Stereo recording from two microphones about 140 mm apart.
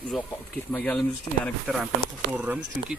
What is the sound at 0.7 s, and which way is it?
Speech, 5° left (ahead or behind).